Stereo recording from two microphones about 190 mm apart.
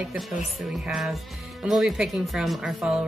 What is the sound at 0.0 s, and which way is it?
Speech, centre (ahead or behind).